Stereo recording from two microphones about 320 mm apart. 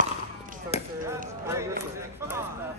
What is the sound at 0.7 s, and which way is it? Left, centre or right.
Chop, centre.